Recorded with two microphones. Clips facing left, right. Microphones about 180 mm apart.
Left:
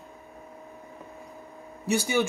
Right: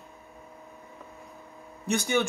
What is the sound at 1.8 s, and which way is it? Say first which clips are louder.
Speech: left 1 dB; 5° left (ahead or behind).